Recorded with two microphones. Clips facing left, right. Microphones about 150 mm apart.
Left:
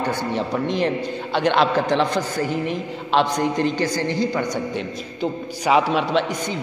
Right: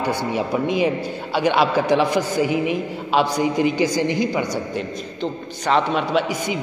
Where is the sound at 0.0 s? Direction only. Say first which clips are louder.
Right 1 dB; 10° right (ahead or behind).